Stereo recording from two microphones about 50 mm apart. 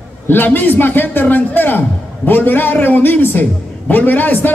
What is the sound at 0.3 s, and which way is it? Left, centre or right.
A man's voice, left.